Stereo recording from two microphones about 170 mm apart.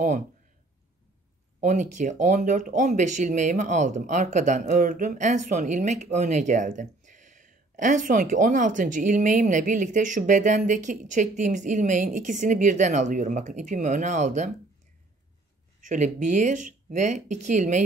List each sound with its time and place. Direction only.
1.6 s speech: 50° right (ahead or behind)
15.8 s speech: 45° right (ahead or behind)